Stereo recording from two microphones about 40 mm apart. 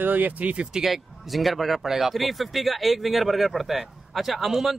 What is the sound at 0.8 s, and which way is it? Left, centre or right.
Speech, centre.